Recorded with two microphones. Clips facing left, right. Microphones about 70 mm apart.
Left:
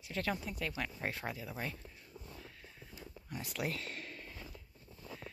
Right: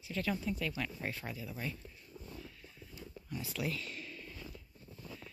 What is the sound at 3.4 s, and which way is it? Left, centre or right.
Speech, left.